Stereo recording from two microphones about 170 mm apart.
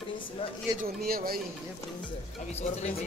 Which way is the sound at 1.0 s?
60° right (ahead or behind).